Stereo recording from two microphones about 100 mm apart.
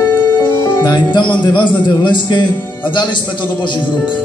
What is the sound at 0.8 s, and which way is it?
A man's voice, 45° left (ahead or behind).